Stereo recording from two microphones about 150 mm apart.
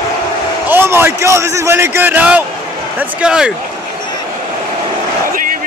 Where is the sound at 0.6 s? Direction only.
15° right (ahead or behind).